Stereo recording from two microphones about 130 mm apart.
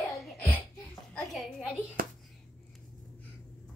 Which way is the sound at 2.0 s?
90° right.